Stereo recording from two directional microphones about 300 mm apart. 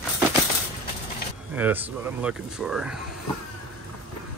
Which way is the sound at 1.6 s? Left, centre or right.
Centre.